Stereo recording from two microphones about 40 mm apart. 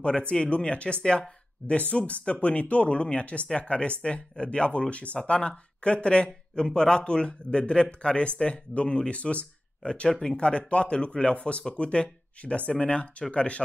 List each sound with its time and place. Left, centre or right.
0.3 s speech: left
10.0 s speech: centre
10.3 s speech: left